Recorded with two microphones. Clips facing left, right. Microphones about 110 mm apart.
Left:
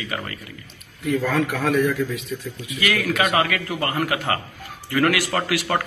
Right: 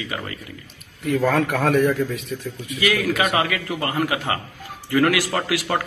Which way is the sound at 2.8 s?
15° right (ahead or behind).